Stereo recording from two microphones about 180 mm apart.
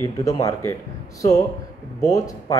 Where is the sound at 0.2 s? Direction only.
20° left (ahead or behind).